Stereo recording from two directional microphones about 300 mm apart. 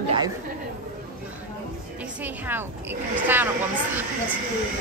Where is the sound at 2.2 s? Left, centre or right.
Centre.